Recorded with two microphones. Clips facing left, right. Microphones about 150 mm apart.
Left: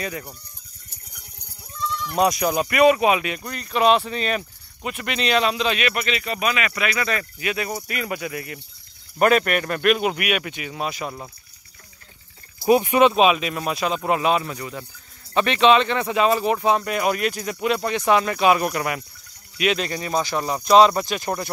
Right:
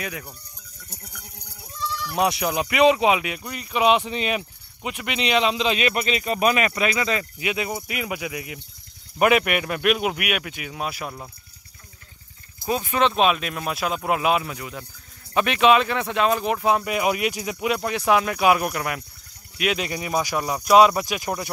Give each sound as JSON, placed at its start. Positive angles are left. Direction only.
{"t": 0.0, "sound": "speech", "side_deg": 0}
{"t": 2.0, "sound": "speech", "side_deg": -5}
{"t": 2.9, "sound": "speech", "side_deg": -15}
{"t": 6.2, "sound": "speech", "side_deg": -40}
{"t": 6.7, "sound": "speech", "side_deg": -25}
{"t": 12.6, "sound": "speech", "side_deg": 15}
{"t": 13.1, "sound": "speech", "side_deg": 0}